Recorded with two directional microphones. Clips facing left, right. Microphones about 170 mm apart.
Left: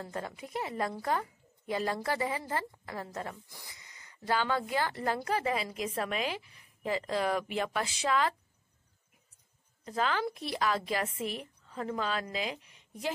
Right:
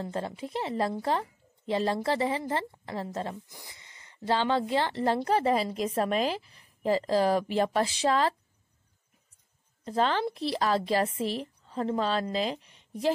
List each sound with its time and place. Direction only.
0.0 s a woman's voice: 30° right (ahead or behind)
9.8 s a woman's voice: 30° right (ahead or behind)